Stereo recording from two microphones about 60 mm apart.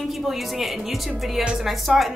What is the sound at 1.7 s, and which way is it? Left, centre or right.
Speech, centre.